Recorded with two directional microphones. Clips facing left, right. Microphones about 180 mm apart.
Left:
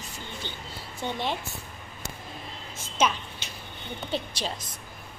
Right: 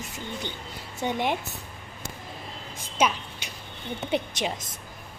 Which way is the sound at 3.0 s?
10° right (ahead or behind).